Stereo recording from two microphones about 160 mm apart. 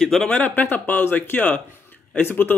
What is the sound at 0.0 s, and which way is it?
A man's voice, 5° left (ahead or behind).